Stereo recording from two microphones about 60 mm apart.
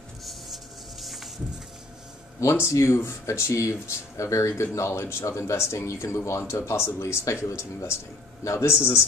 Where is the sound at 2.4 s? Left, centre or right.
Left.